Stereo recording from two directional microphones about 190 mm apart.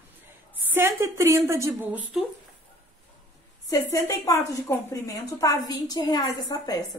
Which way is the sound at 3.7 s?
15° left (ahead or behind).